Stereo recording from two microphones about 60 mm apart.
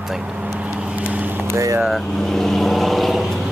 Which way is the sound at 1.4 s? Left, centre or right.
Right.